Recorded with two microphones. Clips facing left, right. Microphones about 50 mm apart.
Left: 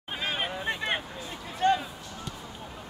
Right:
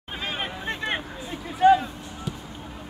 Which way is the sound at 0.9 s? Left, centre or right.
Centre.